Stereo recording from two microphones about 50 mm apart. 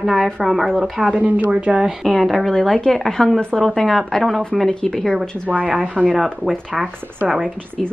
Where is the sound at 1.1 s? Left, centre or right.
Right.